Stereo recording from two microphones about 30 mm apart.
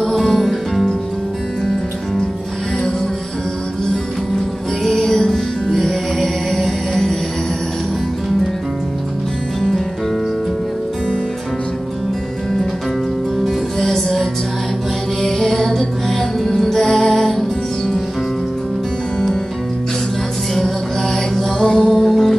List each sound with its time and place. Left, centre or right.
0.0 s music: centre
4.8 s music: centre
13.4 s music: centre
15.2 s music: centre
21.6 s music: left
22.0 s music: centre